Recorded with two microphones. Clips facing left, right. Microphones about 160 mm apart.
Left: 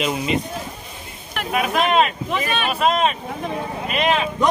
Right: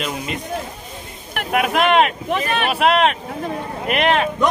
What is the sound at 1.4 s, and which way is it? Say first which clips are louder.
Speech: right 2 dB; 65° right (ahead or behind).